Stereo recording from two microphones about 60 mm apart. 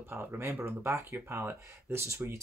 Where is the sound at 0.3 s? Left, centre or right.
Right.